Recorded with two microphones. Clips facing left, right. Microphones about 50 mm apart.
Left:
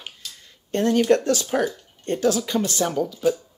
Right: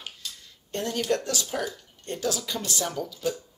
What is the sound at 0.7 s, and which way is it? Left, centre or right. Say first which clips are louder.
Speech: left 9 dB; left.